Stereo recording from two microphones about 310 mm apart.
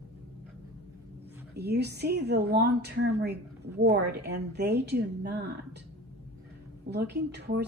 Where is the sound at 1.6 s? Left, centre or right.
Right.